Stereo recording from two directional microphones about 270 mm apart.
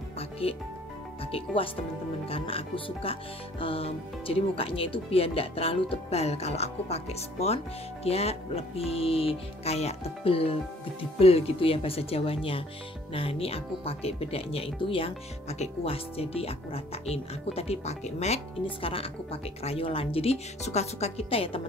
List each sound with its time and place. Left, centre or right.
0.2 s music: left
1.2 s speech: left